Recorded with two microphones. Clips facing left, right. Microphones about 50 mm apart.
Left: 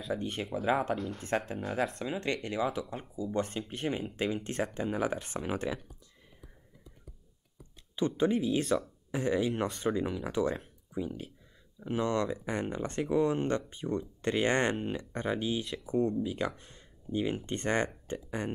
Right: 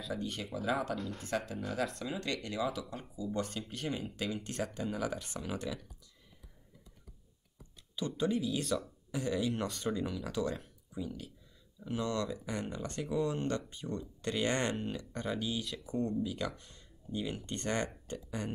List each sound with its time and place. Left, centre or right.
0.1 s speech: left
7.9 s speech: left